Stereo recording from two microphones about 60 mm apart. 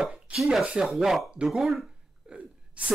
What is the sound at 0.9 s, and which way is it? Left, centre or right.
Speech, centre.